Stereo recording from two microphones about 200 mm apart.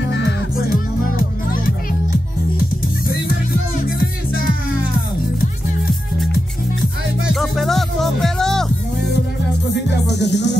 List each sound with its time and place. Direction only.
7.3 s music: centre (ahead or behind)
10.0 s music: 60° left (ahead or behind)